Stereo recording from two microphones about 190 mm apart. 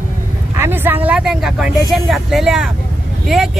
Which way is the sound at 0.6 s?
10° right (ahead or behind).